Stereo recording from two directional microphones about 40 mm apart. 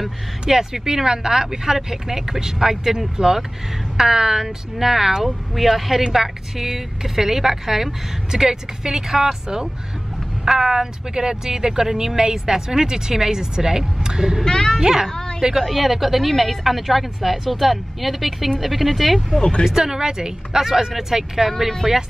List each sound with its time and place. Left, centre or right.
0.0 s a woman's voice: centre
14.4 s a woman's voice: centre
14.8 s speech: centre
15.0 s a woman's voice: centre
15.6 s a woman's voice: centre
19.6 s speech: centre